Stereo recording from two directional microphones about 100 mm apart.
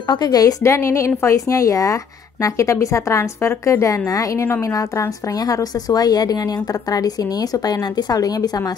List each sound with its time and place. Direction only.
0.1 s a woman's voice: 40° left (ahead or behind)